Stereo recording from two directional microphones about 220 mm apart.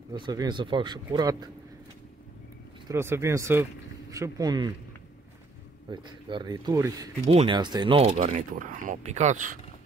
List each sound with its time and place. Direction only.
0.1 s speech: 20° right (ahead or behind)
2.9 s speech: 10° right (ahead or behind)
5.9 s speech: 20° right (ahead or behind)